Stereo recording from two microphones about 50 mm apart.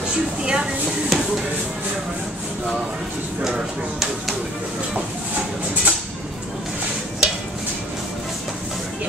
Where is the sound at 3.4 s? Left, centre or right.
Centre.